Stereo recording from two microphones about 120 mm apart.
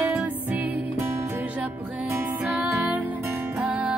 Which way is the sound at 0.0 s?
15° right (ahead or behind).